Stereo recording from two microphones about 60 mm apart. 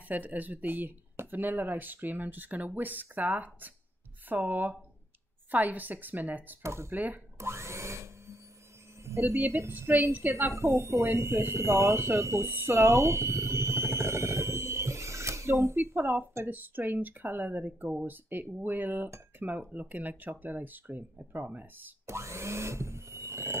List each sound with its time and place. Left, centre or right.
0.1 s speech: right
6.6 s speech: right
6.9 s speech: right
7.3 s vacuum cleaner: right
9.0 s speech: right
9.7 s speech: right
10.3 s speech: right
12.5 s speech: right
12.8 s a sound: right
15.7 s speech: right
22.0 s speech: right